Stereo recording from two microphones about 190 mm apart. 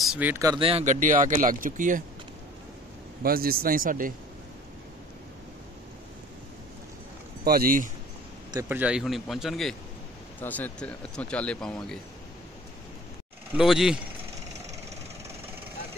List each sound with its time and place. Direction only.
0.0 s speech: 5° right (ahead or behind)
0.7 s speech: 35° right (ahead or behind)
3.2 s speech: 50° right (ahead or behind)
7.4 s speech: 50° right (ahead or behind)
8.5 s speech: 10° right (ahead or behind)
13.6 s speech: centre (ahead or behind)